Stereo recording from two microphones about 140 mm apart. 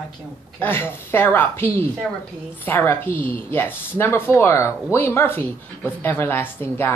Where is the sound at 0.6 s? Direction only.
15° left (ahead or behind).